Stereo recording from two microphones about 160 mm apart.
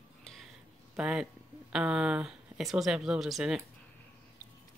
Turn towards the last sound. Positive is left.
turn(degrees=-5)  # may be behind; listen again after turning